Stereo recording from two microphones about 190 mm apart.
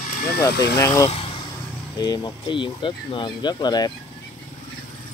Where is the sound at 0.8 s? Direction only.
15° left (ahead or behind).